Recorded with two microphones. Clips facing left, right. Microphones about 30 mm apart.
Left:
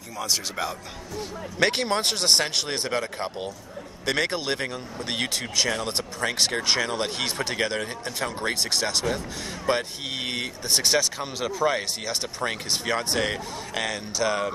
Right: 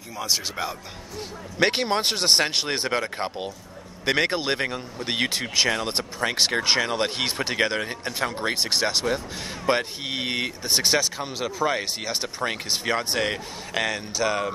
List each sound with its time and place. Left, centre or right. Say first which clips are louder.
0.2 s a man's voice: right 1 dB; centre